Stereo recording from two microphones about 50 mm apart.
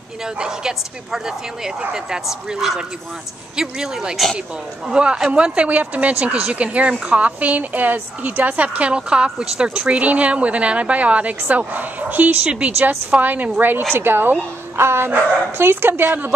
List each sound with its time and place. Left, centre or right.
0.4 s speech: centre
2.5 s speech: centre; by 12.4 s right
12.4 s speech: right
13.1 s a woman's voice: right